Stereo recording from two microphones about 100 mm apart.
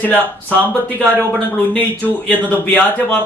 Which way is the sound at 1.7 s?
15° left (ahead or behind).